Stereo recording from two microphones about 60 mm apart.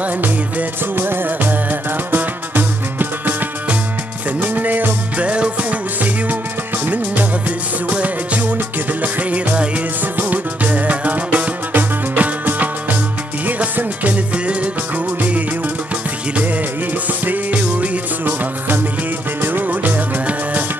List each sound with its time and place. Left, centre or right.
0.0 s music: right
0.9 s music: right